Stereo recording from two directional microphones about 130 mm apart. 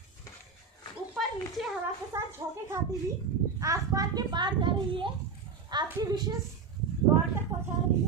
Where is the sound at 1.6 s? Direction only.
Centre (ahead or behind).